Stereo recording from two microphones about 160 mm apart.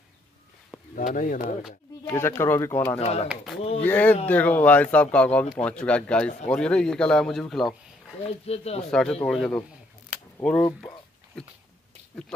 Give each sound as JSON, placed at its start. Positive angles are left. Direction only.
{"t": 1.1, "sound": "speech", "side_deg": 60}
{"t": 2.0, "sound": "speech", "side_deg": 15}
{"t": 3.0, "sound": "speech", "side_deg": 40}
{"t": 3.8, "sound": "speech", "side_deg": 10}
{"t": 8.3, "sound": "speech", "side_deg": 40}
{"t": 8.9, "sound": "speech", "side_deg": 5}